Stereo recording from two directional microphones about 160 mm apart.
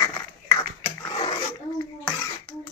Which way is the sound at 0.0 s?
20° left (ahead or behind).